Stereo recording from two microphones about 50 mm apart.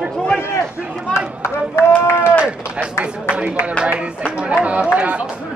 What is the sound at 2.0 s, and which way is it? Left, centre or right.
Speech, left.